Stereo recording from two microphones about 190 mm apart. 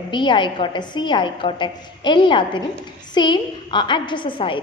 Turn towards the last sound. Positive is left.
turn(degrees=25)  # may be behind; listen again after turning